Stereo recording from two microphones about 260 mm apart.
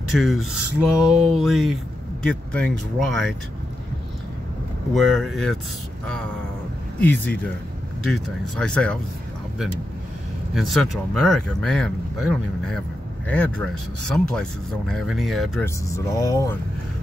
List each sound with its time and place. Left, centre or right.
0.1 s speech: centre
4.9 s speech: centre
7.0 s speech: centre
10.5 s speech: centre
16.2 s speech: centre